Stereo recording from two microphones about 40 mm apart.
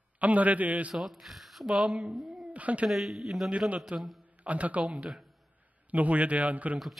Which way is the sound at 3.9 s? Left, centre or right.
Right.